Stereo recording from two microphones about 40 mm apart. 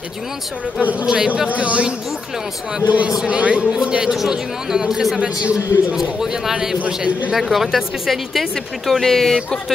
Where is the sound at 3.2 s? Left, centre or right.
Right.